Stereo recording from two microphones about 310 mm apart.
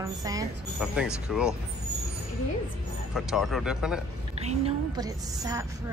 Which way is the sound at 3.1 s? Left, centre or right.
Centre.